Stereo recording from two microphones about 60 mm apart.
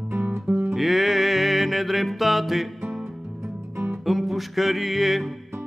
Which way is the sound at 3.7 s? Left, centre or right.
Right.